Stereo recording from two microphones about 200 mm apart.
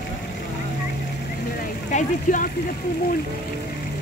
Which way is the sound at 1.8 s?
40° left (ahead or behind).